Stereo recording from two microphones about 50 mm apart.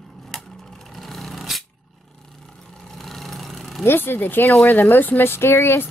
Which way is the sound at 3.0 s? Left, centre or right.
Centre.